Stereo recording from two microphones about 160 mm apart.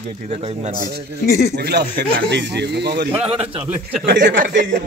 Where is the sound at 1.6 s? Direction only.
90° right.